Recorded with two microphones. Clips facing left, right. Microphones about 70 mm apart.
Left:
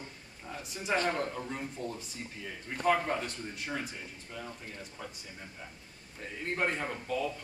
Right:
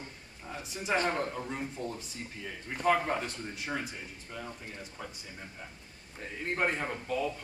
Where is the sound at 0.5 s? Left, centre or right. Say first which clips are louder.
Right 1 dB; centre.